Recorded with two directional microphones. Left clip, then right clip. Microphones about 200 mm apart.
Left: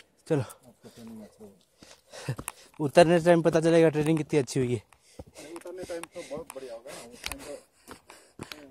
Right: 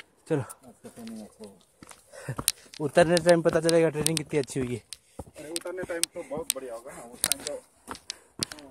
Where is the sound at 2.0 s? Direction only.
45° left (ahead or behind).